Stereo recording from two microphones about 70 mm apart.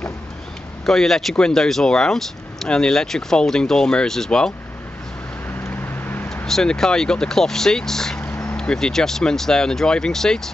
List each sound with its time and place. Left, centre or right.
0.8 s speech: centre
5.7 s vehicle: left
6.4 s speech: centre